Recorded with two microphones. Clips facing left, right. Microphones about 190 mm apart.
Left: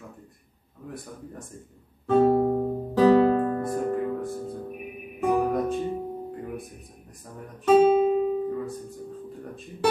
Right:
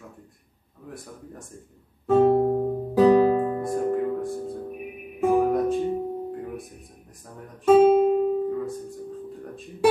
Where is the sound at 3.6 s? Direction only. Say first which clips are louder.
Right 2 dB; centre (ahead or behind).